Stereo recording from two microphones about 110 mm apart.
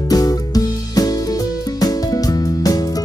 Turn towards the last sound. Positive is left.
turn(degrees=35)  # may be behind; listen again after turning